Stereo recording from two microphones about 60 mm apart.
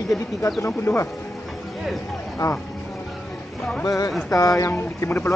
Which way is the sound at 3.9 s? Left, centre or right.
Left.